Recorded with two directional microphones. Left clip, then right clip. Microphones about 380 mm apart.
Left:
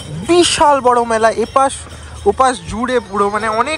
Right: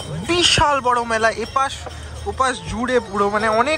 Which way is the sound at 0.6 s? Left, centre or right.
Centre.